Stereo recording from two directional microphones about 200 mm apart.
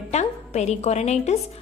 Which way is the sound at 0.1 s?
35° left (ahead or behind).